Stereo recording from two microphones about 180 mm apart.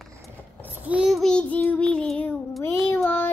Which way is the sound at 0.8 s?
5° right (ahead or behind).